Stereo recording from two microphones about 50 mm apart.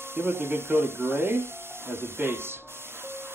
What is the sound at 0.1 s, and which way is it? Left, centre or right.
Speech, right.